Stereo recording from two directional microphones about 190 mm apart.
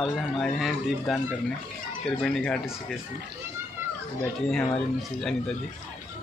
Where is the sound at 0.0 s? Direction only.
Centre (ahead or behind).